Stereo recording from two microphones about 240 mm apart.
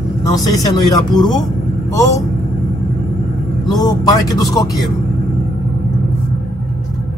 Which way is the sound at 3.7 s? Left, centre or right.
Centre.